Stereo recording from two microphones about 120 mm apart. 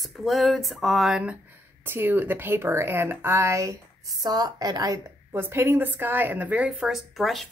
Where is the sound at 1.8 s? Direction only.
20° right (ahead or behind); by 7.4 s centre (ahead or behind).